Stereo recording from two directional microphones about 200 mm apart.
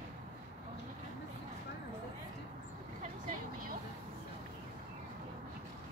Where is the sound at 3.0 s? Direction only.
45° right (ahead or behind).